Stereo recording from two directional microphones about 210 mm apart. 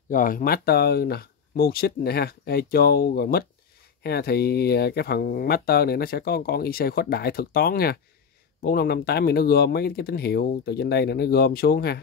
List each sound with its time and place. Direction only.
0.1 s speech: 40° left (ahead or behind)